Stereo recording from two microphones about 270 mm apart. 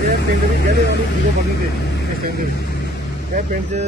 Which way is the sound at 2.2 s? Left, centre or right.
Right.